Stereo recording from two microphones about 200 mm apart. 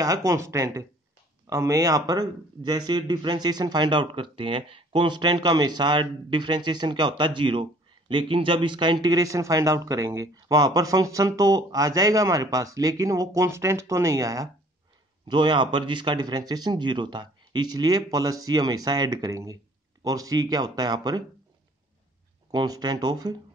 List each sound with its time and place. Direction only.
0.0 s a man's voice: 15° right (ahead or behind)
22.5 s a man's voice: 20° right (ahead or behind)